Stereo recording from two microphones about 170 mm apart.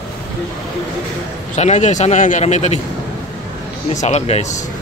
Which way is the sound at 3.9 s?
40° left (ahead or behind).